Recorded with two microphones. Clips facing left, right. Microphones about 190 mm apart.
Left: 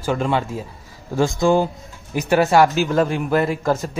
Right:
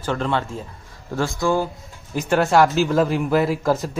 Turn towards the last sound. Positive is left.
turn(degrees=0)  # may be behind; listen again after turning